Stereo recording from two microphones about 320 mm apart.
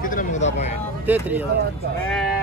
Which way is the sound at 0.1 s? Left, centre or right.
Left.